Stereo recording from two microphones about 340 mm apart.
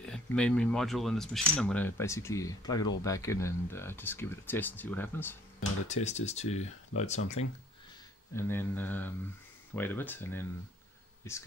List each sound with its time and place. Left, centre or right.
0.0 s speech: centre
5.9 s speech: centre
8.4 s speech: centre